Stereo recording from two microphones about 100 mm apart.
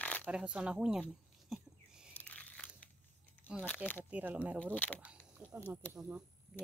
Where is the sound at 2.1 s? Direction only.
15° left (ahead or behind).